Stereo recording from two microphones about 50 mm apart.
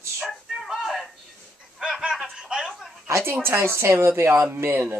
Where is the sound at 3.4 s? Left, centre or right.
Right.